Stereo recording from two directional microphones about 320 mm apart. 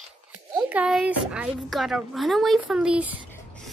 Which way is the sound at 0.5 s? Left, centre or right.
Centre.